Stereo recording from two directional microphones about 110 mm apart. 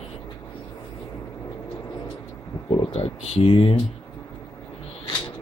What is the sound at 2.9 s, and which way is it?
Speech, 65° left (ahead or behind).